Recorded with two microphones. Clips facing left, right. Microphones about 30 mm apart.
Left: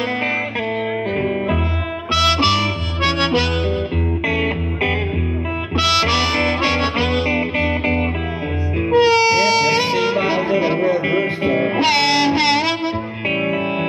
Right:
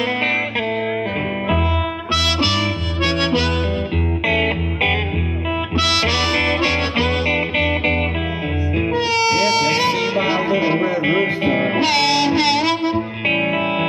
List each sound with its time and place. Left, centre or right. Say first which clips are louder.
0.0 s music: right 1 dB; centre
2.0 s harmonica: left 4 dB; centre
4.3 s music: right 4 dB; centre
5.8 s music: left 2 dB; centre
7.5 s music: right 1 dB; right
8.9 s music: left 5 dB; centre
11.0 s music: right 1 dB; centre
11.8 s music: left 2 dB; centre
13.3 s music: right 1 dB; right